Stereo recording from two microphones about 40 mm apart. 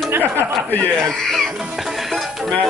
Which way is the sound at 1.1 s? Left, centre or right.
Centre.